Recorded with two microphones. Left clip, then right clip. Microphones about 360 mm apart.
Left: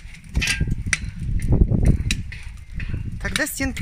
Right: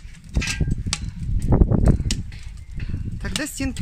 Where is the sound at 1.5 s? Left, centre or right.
Right.